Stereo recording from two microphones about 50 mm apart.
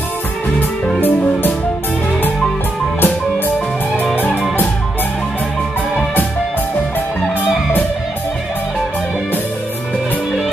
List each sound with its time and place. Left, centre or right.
3.0 s music: left